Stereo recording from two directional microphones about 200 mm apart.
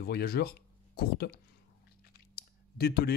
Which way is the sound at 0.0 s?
50° left (ahead or behind).